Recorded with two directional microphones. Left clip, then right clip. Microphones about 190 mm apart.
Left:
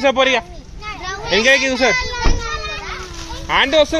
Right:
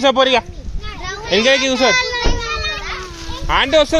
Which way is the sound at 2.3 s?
60° right (ahead or behind).